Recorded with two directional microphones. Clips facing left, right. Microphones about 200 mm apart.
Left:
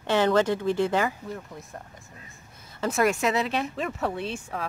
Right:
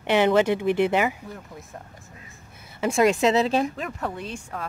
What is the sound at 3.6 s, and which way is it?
Speech, centre (ahead or behind).